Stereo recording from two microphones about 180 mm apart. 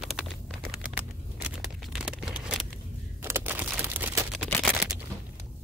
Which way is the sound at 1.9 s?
5° right (ahead or behind).